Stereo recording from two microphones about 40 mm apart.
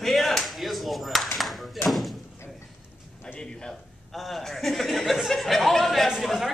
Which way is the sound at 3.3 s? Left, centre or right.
Left.